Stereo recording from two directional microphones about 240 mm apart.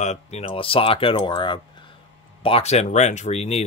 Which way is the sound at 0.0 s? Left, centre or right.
Left.